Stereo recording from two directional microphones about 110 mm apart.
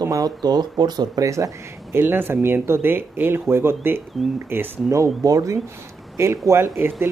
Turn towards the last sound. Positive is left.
turn(degrees=-20)  # may be behind; listen again after turning